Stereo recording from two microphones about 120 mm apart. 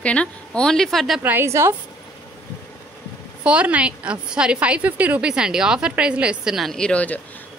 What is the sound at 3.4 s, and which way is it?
A woman's voice, 10° right (ahead or behind).